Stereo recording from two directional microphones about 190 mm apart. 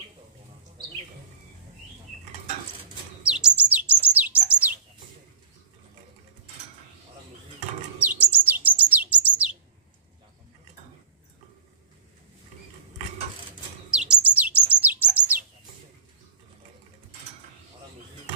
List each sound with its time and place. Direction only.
3.2 s bird: 5° right (ahead or behind)
8.0 s chirp: 10° right (ahead or behind)
9.2 s bird: 5° right (ahead or behind)
13.8 s bird: 5° right (ahead or behind)